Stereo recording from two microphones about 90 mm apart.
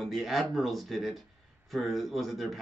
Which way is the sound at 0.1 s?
Centre (ahead or behind).